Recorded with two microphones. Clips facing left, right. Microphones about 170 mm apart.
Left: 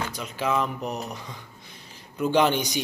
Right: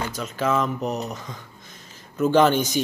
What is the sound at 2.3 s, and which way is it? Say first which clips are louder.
Speech: right 4 dB; 15° left (ahead or behind).